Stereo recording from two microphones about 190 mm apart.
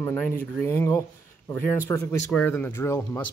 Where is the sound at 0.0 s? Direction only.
10° left (ahead or behind).